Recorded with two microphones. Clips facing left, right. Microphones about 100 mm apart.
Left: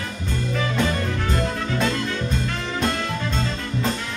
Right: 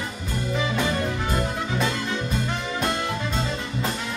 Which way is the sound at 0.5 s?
15° right (ahead or behind).